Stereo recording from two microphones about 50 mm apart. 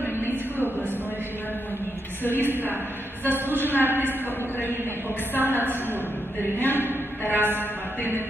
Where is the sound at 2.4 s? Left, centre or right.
Right.